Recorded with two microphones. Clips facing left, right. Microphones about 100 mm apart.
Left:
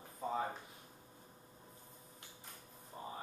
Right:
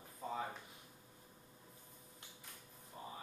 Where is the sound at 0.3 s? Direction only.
30° left (ahead or behind).